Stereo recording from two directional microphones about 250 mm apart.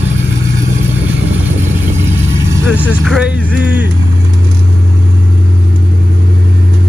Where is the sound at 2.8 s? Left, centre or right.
Centre.